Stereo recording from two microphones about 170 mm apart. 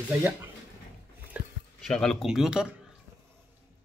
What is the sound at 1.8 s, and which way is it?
A man's voice, 5° left (ahead or behind).